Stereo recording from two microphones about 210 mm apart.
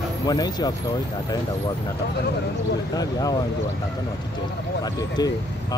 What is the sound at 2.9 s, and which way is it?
Speech, 20° left (ahead or behind).